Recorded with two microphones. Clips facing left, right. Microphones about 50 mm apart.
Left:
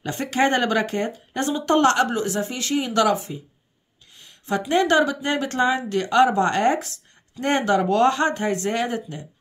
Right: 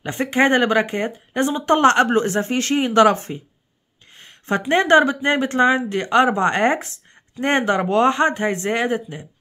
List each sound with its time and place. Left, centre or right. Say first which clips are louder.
0.0 s speech: right 3 dB; right